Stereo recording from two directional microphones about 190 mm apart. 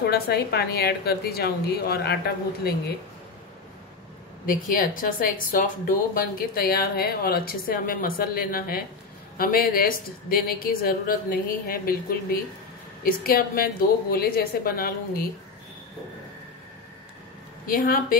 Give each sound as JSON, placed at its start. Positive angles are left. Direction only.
{"t": 0.0, "sound": "a woman's voice", "side_deg": 55}
{"t": 4.5, "sound": "speech", "side_deg": 45}
{"t": 17.6, "sound": "speech", "side_deg": 45}